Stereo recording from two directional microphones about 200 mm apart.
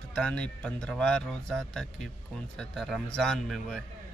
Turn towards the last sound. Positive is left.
turn(degrees=0)  # may be behind; listen again after turning